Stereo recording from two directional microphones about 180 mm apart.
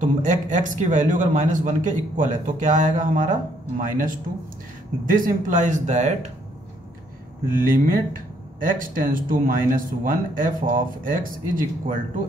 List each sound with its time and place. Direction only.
0.0 s speech: 45° right (ahead or behind)
5.0 s speech: 50° right (ahead or behind)
7.5 s speech: 50° right (ahead or behind)